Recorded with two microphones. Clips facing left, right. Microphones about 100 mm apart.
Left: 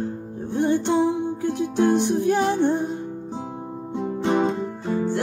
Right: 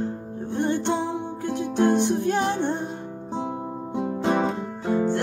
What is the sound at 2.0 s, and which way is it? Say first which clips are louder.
Music: left 2 dB; 15° left (ahead or behind).